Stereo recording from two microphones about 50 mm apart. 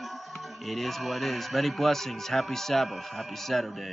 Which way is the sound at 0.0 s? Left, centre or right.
Centre.